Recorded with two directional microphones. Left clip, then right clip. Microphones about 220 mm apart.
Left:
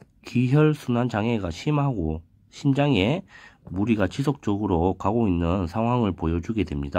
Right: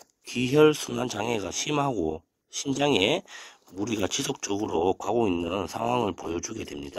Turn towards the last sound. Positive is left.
turn(degrees=-20)  # may be behind; listen again after turning